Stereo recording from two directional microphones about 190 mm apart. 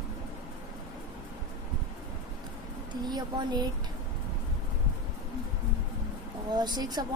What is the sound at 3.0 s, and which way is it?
Speech, 20° right (ahead or behind).